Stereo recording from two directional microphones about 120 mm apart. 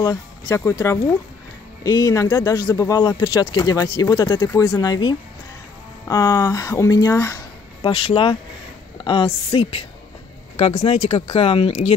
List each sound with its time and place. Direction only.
0.0 s speech: 30° left (ahead or behind)
7.8 s a woman's voice: 50° left (ahead or behind)
10.6 s speech: 70° left (ahead or behind)